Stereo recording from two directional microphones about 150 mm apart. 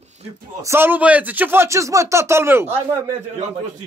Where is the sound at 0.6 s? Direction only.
15° right (ahead or behind).